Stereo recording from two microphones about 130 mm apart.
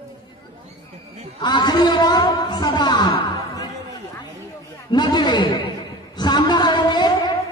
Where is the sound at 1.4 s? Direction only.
35° left (ahead or behind).